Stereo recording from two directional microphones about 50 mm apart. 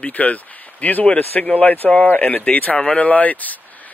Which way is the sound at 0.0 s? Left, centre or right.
Left.